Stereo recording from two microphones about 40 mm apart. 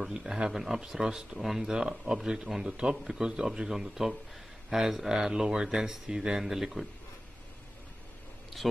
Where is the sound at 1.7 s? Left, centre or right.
Centre.